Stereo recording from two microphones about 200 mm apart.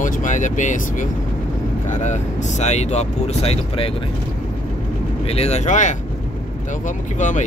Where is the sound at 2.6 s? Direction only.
35° left (ahead or behind).